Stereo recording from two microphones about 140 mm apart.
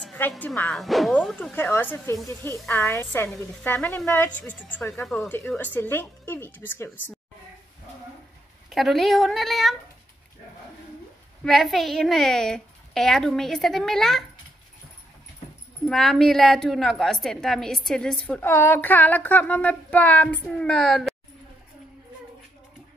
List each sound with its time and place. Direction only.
0.0 s music: 15° left (ahead or behind)
0.7 s speech: centre (ahead or behind)
8.6 s a woman's voice: centre (ahead or behind)
11.4 s a woman's voice: centre (ahead or behind)
15.9 s a woman's voice: centre (ahead or behind)